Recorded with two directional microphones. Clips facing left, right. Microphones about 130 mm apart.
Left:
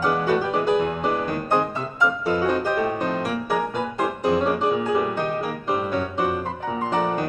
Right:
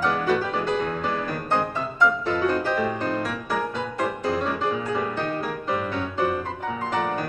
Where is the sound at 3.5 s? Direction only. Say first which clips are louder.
Left 3 dB; 15° left (ahead or behind).